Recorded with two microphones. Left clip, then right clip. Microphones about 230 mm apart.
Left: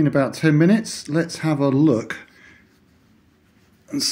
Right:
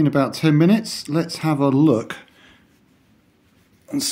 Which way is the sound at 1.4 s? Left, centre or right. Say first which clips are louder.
Right 2 dB; centre.